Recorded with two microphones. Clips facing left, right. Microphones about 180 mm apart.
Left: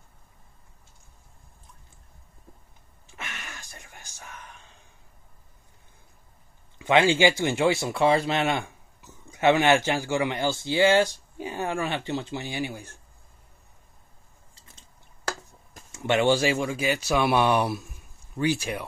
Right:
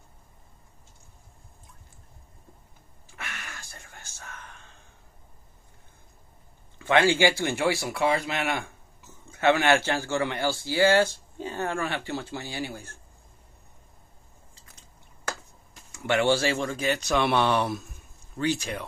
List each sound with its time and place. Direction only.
3.1 s a sound: 20° left (ahead or behind)
6.8 s speech: 20° left (ahead or behind)
15.9 s speech: 20° left (ahead or behind)